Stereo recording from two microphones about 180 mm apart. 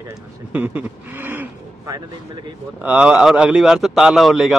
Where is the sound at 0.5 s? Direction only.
10° right (ahead or behind).